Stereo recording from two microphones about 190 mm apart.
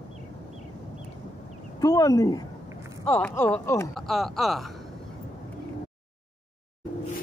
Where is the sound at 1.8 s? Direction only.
20° left (ahead or behind).